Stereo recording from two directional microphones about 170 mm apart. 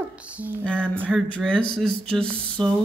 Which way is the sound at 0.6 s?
5° left (ahead or behind).